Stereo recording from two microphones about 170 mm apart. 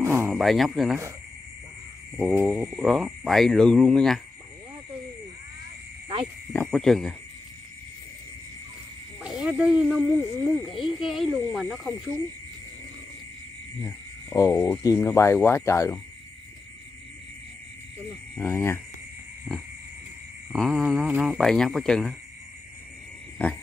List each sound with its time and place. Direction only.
0.0 s a sound: 15° right (ahead or behind)
0.3 s speech: centre (ahead or behind)
2.1 s speech: 10° right (ahead or behind)
6.7 s speech: centre (ahead or behind)
9.2 s speech: 5° right (ahead or behind)
13.8 s speech: 15° left (ahead or behind)
18.4 s speech: 10° left (ahead or behind)
20.5 s speech: centre (ahead or behind)